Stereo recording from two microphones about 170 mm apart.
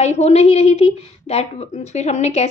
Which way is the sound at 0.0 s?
40° left (ahead or behind).